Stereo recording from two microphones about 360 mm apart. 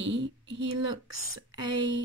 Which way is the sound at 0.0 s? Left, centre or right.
Right.